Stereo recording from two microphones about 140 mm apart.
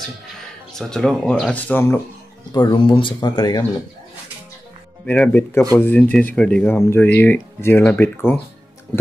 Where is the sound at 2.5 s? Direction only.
30° left (ahead or behind).